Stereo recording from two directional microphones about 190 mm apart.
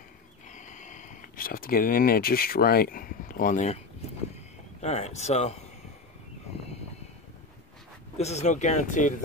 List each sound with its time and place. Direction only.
0.5 s speech: 40° left (ahead or behind)
4.8 s speech: 35° left (ahead or behind)
8.2 s speech: 35° left (ahead or behind)